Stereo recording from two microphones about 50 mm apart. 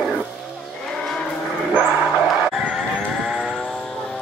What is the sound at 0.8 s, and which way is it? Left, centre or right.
Cattle, centre.